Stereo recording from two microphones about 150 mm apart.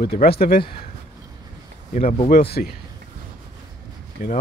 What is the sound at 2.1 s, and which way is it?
Speech, 60° left (ahead or behind).